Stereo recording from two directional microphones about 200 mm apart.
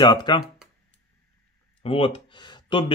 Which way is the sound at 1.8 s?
30° left (ahead or behind).